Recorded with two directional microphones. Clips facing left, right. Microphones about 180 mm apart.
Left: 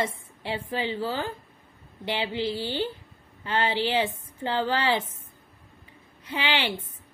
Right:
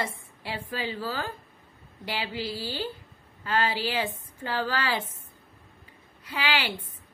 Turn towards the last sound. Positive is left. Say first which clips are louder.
# left 1 dB
turn(degrees=20)  # may be behind; listen again after turning